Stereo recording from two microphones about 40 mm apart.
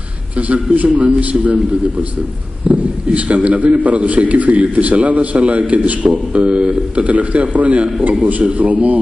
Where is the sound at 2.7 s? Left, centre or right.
Right.